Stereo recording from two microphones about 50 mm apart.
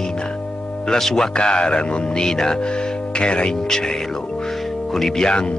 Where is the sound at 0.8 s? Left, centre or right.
Centre.